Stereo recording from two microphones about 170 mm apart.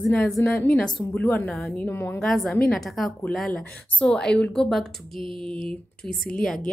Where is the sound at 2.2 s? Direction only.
Centre (ahead or behind).